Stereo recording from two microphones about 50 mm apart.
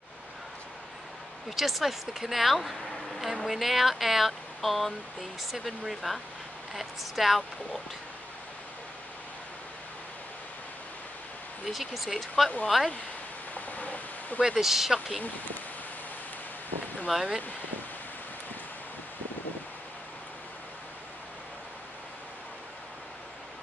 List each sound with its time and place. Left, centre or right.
1.6 s speech: centre
11.6 s speech: centre
13.6 s a sound: left
14.5 s speech: centre
17.1 s speech: centre